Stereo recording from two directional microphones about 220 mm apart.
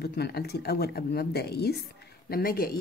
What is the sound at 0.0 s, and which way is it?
Speech, 45° left (ahead or behind).